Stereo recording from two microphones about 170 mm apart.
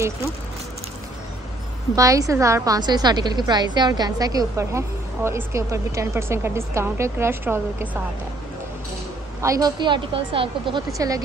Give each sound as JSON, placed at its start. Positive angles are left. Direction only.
{"t": 2.0, "sound": "a woman's voice", "side_deg": -20}
{"t": 9.4, "sound": "a woman's voice", "side_deg": -20}
{"t": 11.0, "sound": "a woman's voice", "side_deg": -20}